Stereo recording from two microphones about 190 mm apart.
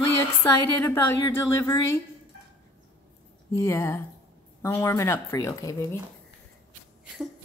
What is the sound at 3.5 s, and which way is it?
A woman's voice, 15° left (ahead or behind).